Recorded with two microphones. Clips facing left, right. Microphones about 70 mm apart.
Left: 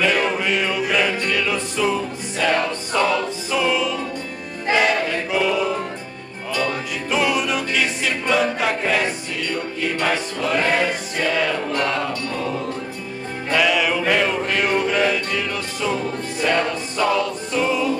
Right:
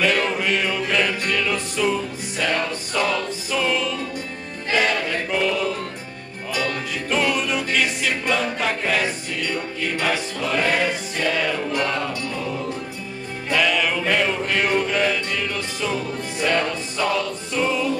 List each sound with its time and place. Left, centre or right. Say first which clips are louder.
0.0 s music: left 1 dB; centre
4.7 s choir: left 2 dB; centre
6.7 s music: left 1 dB; centre